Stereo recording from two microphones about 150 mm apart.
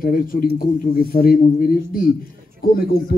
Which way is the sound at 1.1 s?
85° left.